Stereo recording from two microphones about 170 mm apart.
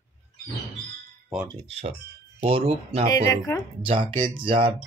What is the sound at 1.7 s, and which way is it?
Speech, 35° right (ahead or behind).